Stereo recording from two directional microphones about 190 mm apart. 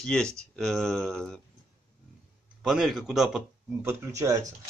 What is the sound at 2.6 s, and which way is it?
Speech, centre (ahead or behind).